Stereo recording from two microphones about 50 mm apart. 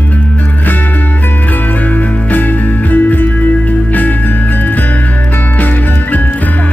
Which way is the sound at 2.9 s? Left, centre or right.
Left.